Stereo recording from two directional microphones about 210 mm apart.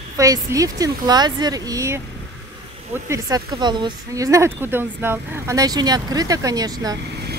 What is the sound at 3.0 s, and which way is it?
A woman's voice, 15° right (ahead or behind).